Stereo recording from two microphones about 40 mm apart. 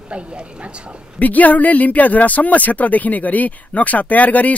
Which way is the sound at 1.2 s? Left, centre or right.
Left.